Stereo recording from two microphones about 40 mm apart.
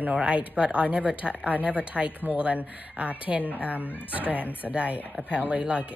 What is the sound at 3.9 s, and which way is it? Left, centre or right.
Speech, left.